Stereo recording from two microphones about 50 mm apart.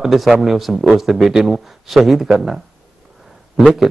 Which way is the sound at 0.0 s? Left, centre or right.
Centre.